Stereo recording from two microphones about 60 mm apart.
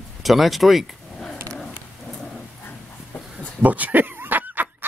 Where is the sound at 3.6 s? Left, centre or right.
Right.